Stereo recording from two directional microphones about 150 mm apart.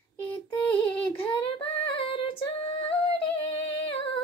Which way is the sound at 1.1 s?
35° left (ahead or behind).